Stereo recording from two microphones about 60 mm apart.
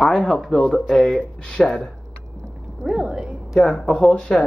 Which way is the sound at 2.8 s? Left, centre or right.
Centre.